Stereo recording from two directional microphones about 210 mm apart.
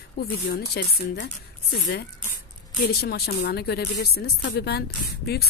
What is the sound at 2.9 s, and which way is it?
Speech, 50° left (ahead or behind).